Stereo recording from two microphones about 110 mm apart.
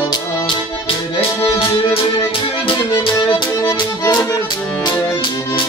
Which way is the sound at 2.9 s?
35° left (ahead or behind).